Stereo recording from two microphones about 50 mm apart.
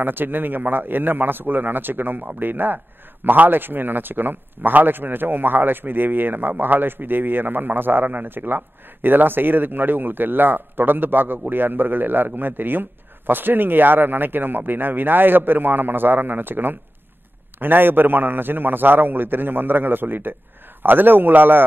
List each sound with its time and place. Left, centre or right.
0.0 s a man's voice: right